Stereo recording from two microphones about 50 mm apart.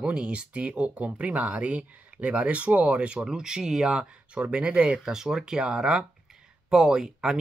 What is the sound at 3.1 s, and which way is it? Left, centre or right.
Speech, centre.